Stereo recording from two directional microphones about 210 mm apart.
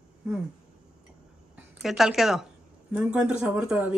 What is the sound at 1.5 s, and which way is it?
A woman's voice, centre (ahead or behind).